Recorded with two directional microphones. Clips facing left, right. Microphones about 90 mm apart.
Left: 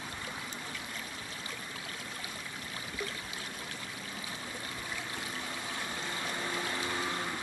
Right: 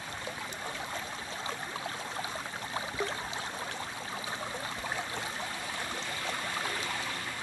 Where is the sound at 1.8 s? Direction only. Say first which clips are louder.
Right 6 dB; 35° right (ahead or behind).